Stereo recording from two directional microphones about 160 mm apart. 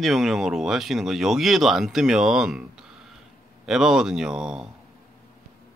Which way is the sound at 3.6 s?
5° right (ahead or behind).